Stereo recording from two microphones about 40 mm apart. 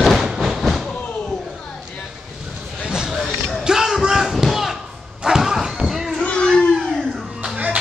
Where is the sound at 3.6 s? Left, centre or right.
Centre.